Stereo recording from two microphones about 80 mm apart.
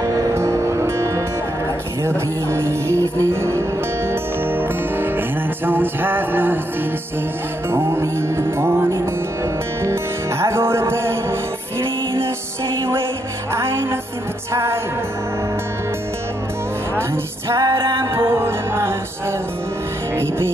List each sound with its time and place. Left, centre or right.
0.0 s music: right
7.7 s music: right
10.4 s music: right
13.6 s music: right
17.5 s music: right
20.2 s music: right